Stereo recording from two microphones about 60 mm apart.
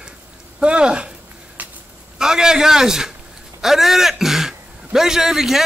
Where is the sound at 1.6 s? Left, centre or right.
Right.